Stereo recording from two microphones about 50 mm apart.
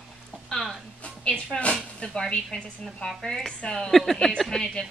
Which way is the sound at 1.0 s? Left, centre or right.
Left.